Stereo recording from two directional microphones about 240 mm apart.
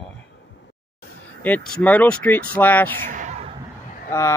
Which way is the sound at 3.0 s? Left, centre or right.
Right.